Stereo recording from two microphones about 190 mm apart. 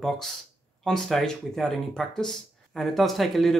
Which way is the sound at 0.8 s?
Centre (ahead or behind).